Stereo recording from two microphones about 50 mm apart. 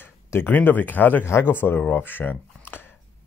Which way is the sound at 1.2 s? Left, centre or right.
Left.